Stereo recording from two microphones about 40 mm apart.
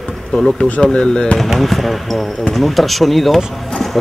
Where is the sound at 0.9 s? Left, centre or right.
Left.